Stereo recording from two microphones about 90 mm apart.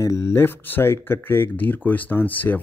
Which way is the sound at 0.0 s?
30° left (ahead or behind).